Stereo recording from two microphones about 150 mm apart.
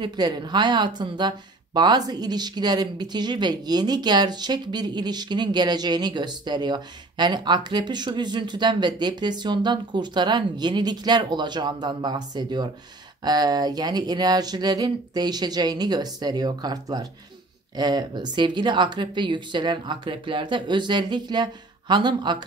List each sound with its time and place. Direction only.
0.0 s speech: 30° right (ahead or behind)